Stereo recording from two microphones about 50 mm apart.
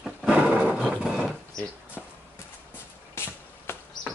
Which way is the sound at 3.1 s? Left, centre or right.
Left.